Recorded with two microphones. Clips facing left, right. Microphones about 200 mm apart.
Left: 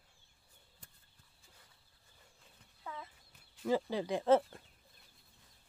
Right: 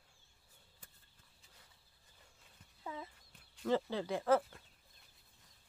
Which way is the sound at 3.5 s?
10° left (ahead or behind).